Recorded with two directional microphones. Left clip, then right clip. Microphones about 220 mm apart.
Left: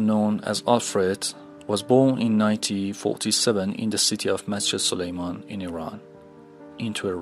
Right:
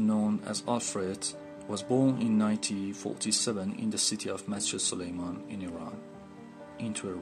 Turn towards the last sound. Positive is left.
turn(degrees=35)  # may be behind; listen again after turning